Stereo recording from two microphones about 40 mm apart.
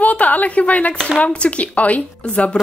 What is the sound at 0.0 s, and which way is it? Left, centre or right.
A woman's voice, left.